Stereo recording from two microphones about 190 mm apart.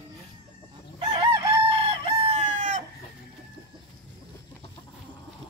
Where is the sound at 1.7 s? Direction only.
30° right (ahead or behind).